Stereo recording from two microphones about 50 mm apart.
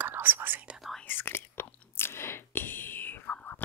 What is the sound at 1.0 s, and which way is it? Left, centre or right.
Whispering, left.